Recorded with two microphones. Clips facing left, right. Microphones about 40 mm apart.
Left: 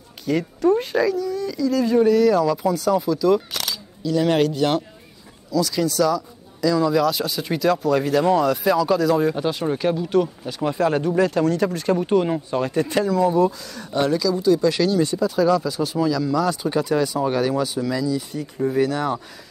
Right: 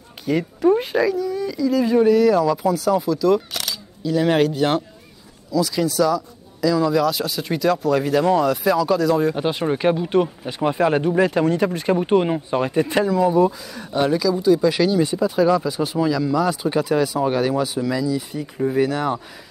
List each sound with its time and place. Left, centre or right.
0.2 s speech: centre
4.0 s a man's voice: centre
9.3 s speech: right; by 19.2 s centre